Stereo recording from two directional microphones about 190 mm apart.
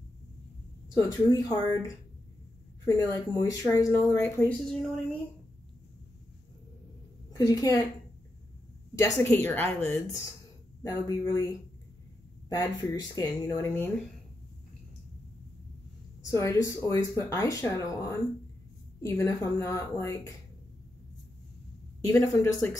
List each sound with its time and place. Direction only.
0.9 s speech: 15° left (ahead or behind)
7.3 s speech: 20° left (ahead or behind)
8.9 s speech: 15° left (ahead or behind)
12.4 s speech: 20° left (ahead or behind)
16.3 s a woman's voice: 15° left (ahead or behind)
18.9 s speech: 15° left (ahead or behind)
22.0 s speech: 15° left (ahead or behind)